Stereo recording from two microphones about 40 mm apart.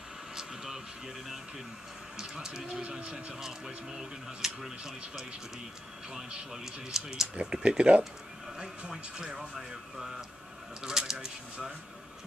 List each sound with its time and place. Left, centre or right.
0.4 s a sound: centre
2.1 s speech: centre
3.0 s speech: right
3.3 s speech: centre
6.5 s speech: centre
7.3 s speech: right